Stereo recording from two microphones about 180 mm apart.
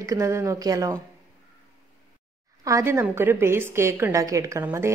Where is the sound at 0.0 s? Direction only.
15° right (ahead or behind).